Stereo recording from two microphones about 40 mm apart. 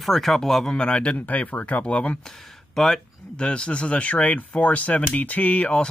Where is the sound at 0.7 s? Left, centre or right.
Left.